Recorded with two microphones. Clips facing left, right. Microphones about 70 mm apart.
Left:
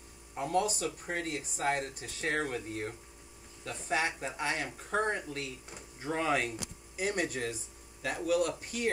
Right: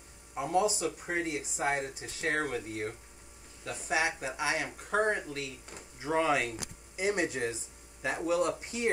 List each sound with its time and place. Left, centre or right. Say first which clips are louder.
0.3 s speech: right 2 dB; centre
5.3 s speech: right 1 dB; centre; by 8.8 s right